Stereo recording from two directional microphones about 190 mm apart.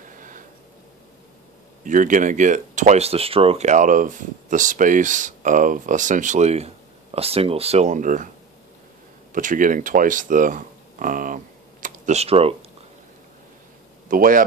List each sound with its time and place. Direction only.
0.0 s a sound: 45° right (ahead or behind)
1.9 s speech: 40° right (ahead or behind)
9.3 s speech: 45° right (ahead or behind)
14.0 s a man's voice: 45° right (ahead or behind)